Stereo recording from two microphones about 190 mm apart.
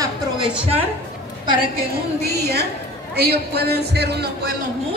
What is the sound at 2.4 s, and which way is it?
A man's voice, 60° right (ahead or behind).